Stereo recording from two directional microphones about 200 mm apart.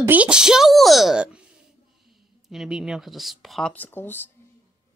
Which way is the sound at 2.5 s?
5° right (ahead or behind).